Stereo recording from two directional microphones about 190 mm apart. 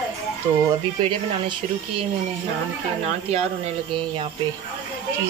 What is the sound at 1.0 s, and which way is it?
Speech, 25° right (ahead or behind).